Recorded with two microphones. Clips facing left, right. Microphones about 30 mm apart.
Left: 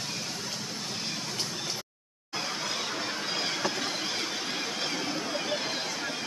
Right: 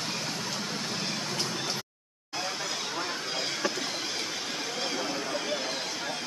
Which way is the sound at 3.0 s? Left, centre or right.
Centre.